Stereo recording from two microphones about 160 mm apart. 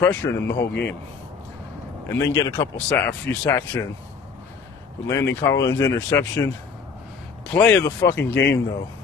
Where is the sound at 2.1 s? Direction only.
20° left (ahead or behind).